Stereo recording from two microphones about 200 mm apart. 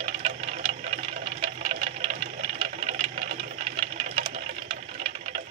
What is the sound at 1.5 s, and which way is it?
Sewing machine, 35° right (ahead or behind).